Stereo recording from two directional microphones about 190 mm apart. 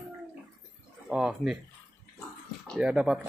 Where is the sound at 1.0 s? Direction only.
5° right (ahead or behind).